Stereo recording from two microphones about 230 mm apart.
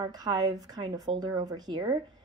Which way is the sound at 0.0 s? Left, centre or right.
Centre.